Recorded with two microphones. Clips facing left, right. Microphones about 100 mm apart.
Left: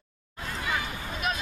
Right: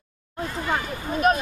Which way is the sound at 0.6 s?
45° right (ahead or behind).